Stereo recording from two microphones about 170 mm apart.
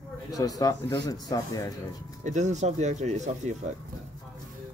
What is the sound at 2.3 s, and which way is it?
Speech, 45° right (ahead or behind).